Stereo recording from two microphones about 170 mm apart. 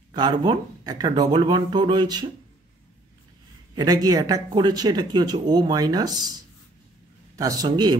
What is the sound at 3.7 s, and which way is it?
Speech, 20° right (ahead or behind).